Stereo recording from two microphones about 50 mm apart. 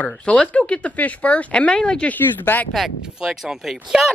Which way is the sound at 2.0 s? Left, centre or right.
Left.